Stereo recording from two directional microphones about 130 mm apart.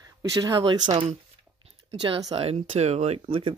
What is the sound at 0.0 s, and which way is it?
Speech, 25° right (ahead or behind).